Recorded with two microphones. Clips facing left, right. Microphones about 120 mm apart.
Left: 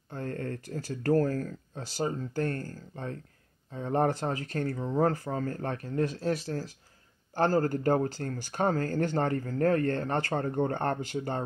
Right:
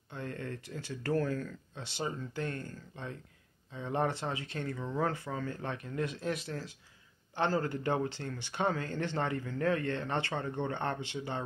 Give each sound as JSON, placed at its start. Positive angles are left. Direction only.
{"t": 0.1, "sound": "speech", "side_deg": 40}